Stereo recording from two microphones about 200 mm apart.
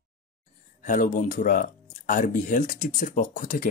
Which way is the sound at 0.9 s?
40° left (ahead or behind).